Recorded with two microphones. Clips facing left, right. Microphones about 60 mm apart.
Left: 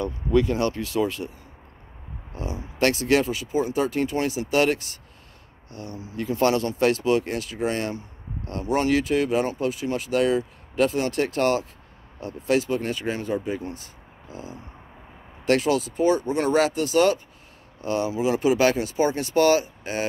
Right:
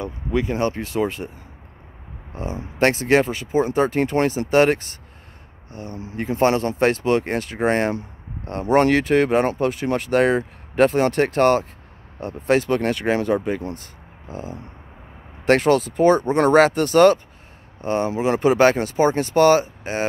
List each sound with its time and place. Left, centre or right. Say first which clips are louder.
0.0 s speech: left 2 dB; right
2.3 s speech: right 4 dB; right
17.8 s speech: right 3 dB; right